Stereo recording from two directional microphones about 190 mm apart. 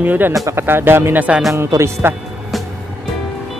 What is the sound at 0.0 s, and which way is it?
Speech, 10° right (ahead or behind).